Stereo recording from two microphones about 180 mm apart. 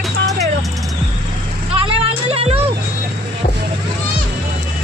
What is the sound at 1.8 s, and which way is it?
Music, 30° right (ahead or behind).